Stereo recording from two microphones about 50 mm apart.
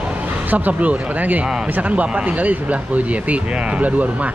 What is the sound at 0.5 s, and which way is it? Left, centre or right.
Speech, right.